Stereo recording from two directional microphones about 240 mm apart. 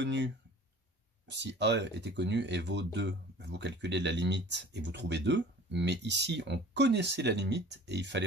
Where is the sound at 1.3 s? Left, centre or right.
Right.